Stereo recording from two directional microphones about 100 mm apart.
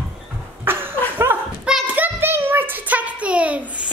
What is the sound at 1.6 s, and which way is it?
Hands, 10° right (ahead or behind).